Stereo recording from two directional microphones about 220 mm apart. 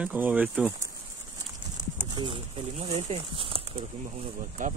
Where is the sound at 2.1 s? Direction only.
20° right (ahead or behind).